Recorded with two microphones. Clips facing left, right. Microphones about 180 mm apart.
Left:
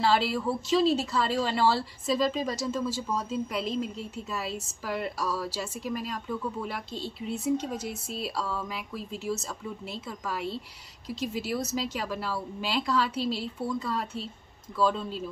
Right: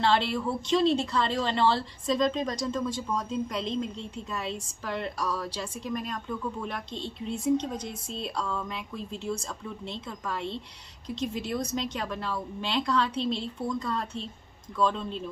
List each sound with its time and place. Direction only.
0.0 s a woman's voice: 5° left (ahead or behind)